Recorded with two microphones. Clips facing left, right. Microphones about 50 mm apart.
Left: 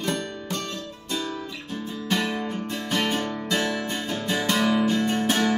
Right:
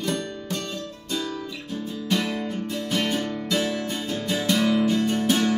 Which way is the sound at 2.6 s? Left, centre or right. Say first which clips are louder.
Even; left.